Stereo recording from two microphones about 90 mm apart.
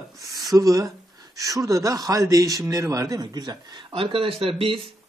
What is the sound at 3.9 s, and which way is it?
Speech, 75° right (ahead or behind).